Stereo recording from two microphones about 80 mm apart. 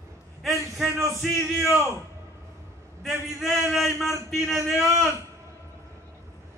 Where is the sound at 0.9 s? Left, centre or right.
Right.